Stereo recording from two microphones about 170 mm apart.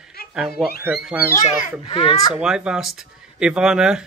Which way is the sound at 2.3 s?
5° right (ahead or behind).